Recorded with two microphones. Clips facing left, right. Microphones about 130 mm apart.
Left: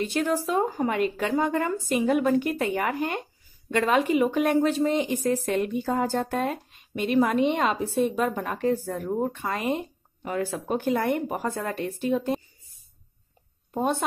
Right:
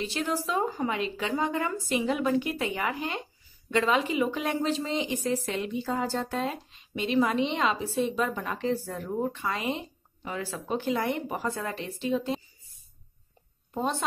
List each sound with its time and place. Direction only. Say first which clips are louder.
0.0 s a woman's voice: left 5 dB; 50° left (ahead or behind)
13.7 s a woman's voice: left 4 dB; 50° left (ahead or behind)